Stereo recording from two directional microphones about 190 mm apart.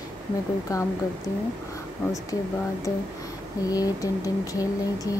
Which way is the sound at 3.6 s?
20° left (ahead or behind).